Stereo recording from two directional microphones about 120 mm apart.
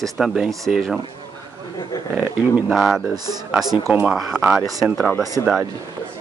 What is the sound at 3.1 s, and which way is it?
Speech, 35° right (ahead or behind).